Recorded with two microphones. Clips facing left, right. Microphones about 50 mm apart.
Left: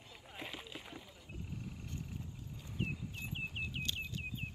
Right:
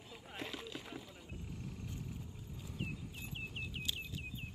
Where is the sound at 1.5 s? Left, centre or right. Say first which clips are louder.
Even; centre.